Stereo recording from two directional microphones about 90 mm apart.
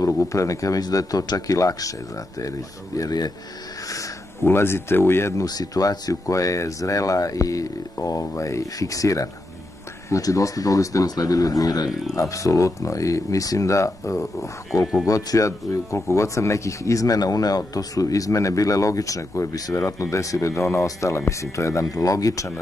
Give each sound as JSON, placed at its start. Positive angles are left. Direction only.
{"t": 0.0, "sound": "speech", "side_deg": 35}
{"t": 4.5, "sound": "speech", "side_deg": 25}
{"t": 5.4, "sound": "speech", "side_deg": 45}